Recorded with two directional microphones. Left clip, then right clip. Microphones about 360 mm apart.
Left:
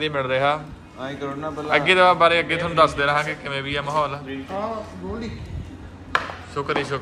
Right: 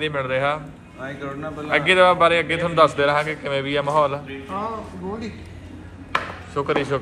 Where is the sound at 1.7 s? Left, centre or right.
Centre.